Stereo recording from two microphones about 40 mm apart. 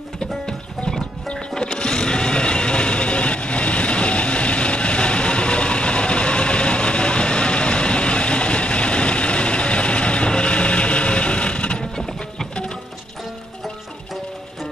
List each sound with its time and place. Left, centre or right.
0.2 s music: centre